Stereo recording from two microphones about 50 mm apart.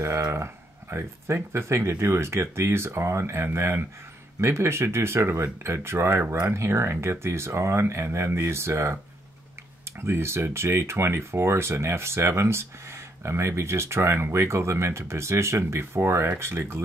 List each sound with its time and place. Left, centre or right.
0.0 s speech: right
9.9 s speech: right